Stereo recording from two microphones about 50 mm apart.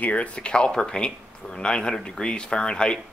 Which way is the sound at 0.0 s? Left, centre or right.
Left.